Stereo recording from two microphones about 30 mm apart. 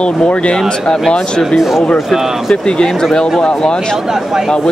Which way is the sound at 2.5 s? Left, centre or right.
Left.